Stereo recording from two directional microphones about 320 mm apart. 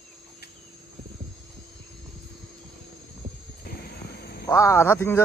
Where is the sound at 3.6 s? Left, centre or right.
Left.